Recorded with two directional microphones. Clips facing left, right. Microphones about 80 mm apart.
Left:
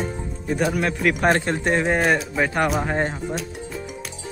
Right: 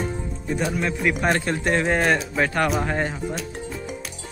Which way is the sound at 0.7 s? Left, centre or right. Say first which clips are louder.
Left 2 dB; left.